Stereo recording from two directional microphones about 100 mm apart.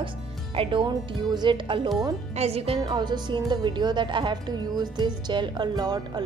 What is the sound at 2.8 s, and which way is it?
A woman's voice, 45° right (ahead or behind).